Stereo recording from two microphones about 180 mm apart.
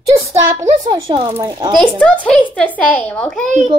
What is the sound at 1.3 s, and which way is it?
Speech, 15° right (ahead or behind).